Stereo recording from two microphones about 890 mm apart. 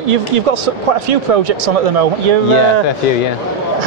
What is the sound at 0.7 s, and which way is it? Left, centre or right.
Speech, right.